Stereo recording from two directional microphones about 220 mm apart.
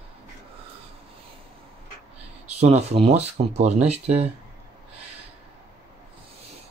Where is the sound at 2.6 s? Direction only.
30° right (ahead or behind).